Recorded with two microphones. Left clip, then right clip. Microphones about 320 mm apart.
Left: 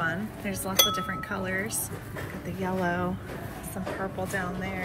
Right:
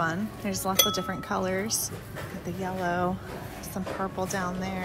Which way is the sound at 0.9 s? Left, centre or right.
Right.